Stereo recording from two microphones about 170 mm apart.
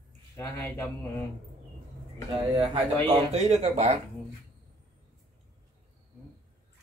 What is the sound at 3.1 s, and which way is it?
Speech, 40° right (ahead or behind).